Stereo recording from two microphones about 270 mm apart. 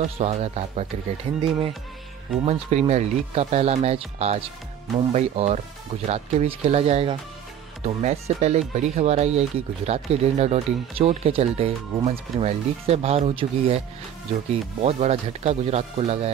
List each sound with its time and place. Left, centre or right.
0.0 s speech: right
2.4 s speech: right